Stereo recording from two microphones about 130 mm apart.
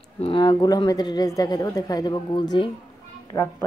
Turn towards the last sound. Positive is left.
turn(degrees=20)  # may be behind; listen again after turning